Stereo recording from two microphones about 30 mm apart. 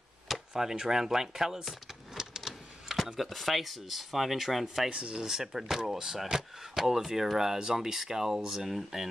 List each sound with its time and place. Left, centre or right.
0.5 s speech: centre
2.1 s printer: centre
3.2 s speech: centre